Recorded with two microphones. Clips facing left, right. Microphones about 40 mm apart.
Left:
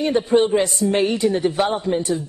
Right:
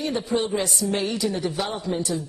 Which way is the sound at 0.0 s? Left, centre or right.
Left.